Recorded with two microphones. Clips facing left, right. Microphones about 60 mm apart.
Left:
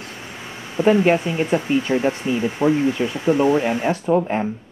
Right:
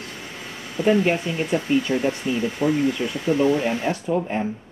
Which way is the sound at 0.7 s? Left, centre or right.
Left.